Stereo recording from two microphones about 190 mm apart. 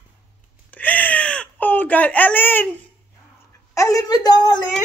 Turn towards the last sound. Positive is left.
turn(degrees=20)  # may be behind; listen again after turning